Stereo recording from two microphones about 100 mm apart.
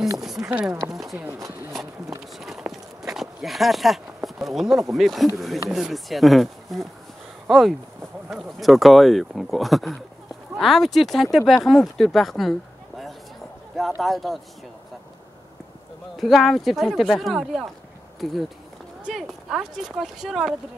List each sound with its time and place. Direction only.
0.2 s speech: 5° right (ahead or behind)
1.4 s speech: 20° right (ahead or behind)
1.7 s walk: centre (ahead or behind)
4.9 s speech: centre (ahead or behind)
16.2 s speech: centre (ahead or behind)
19.1 s speech: 5° right (ahead or behind)